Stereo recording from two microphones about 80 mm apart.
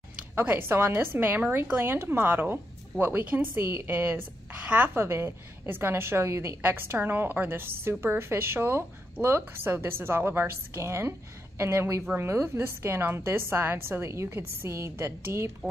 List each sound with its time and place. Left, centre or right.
0.4 s a woman's voice: right